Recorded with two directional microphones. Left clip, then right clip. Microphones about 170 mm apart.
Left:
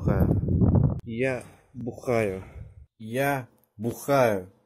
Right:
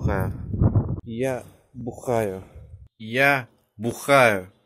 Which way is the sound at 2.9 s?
10° left (ahead or behind).